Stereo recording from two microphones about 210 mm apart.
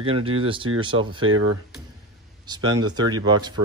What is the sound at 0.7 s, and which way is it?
Speech, 90° right.